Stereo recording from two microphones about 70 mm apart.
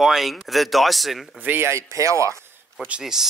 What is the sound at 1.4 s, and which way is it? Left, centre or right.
Speech, right.